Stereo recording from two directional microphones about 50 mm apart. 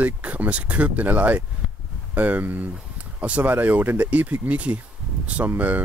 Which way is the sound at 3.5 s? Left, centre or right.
Right.